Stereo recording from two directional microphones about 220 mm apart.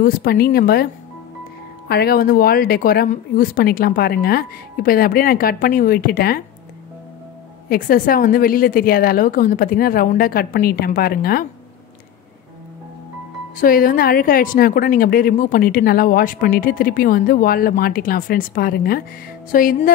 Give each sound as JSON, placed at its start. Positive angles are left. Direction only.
{"t": 0.0, "sound": "speech", "side_deg": 40}
{"t": 1.9, "sound": "a woman's voice", "side_deg": 45}
{"t": 7.7, "sound": "a woman's voice", "side_deg": 40}
{"t": 13.6, "sound": "a woman's voice", "side_deg": 40}